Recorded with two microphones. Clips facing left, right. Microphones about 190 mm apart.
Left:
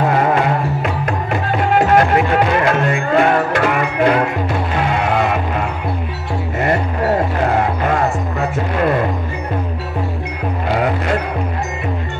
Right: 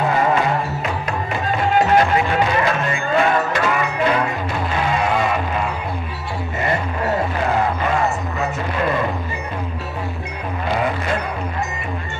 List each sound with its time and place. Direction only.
1.8 s music: 60° left (ahead or behind)